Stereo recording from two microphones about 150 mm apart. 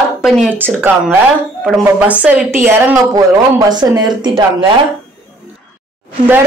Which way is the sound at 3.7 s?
25° right (ahead or behind).